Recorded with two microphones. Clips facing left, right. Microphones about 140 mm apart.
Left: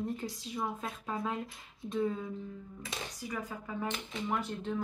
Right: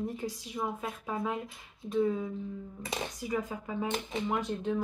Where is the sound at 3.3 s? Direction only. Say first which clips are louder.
Right 6 dB; 20° right (ahead or behind).